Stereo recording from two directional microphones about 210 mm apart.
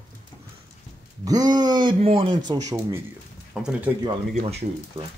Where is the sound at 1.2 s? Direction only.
20° right (ahead or behind).